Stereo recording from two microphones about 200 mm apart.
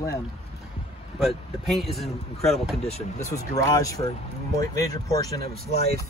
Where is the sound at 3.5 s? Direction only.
15° left (ahead or behind).